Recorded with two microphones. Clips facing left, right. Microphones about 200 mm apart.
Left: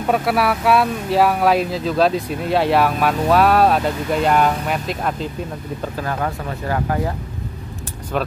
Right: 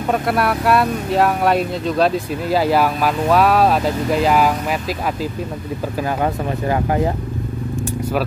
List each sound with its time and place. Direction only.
0.1 s speech: 5° left (ahead or behind)
5.9 s speech: 15° right (ahead or behind)